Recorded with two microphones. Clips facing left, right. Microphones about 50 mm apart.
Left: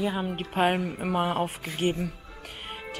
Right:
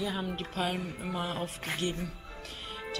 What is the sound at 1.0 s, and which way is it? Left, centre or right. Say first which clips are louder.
Speech: left 8 dB; left.